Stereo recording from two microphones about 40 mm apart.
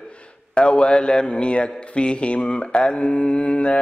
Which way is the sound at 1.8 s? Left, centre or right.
Left.